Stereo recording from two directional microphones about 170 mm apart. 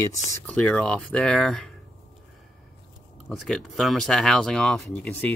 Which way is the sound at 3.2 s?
Centre (ahead or behind).